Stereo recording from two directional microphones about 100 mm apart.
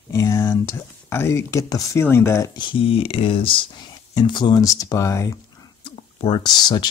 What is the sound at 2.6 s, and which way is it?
Speech, 60° left (ahead or behind).